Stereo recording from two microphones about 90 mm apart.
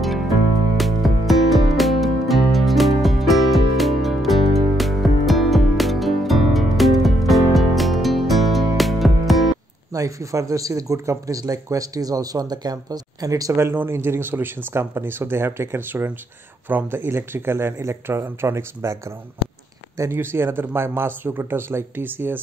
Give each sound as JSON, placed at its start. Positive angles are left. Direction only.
{"t": 0.7, "sound": "music", "side_deg": 0}
{"t": 9.9, "sound": "speech", "side_deg": -35}